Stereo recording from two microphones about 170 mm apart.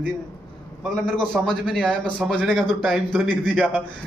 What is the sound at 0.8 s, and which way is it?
Speech, 5° left (ahead or behind).